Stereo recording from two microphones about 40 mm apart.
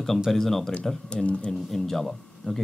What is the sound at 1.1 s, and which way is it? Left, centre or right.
Speech, left.